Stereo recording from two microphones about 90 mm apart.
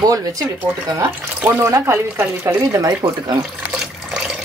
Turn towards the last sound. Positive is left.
turn(degrees=-40)  # may be behind; listen again after turning